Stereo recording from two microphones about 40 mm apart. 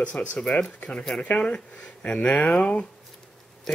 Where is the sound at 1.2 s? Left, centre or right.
Left.